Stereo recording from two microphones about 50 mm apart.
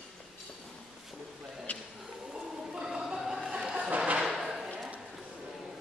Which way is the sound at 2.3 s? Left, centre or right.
Centre.